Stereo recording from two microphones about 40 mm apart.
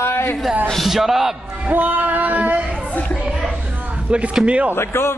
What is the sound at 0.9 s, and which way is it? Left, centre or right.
Speech, centre.